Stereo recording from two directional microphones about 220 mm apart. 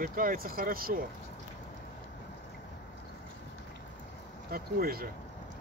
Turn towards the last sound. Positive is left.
turn(degrees=-40)  # may be behind; listen again after turning